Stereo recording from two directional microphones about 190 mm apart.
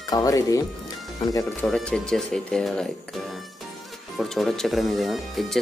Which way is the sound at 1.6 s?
5° left (ahead or behind).